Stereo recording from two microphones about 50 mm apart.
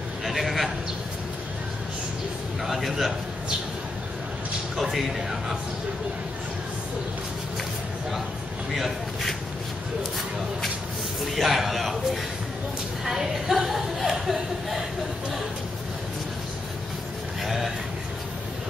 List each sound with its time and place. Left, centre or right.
0.2 s a sound: centre
2.6 s a man's voice: centre
4.7 s a man's voice: centre
8.7 s a man's voice: centre
11.3 s a man's voice: centre
17.4 s a sound: centre